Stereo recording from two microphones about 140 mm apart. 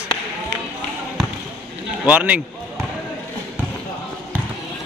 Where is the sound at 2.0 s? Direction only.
10° right (ahead or behind).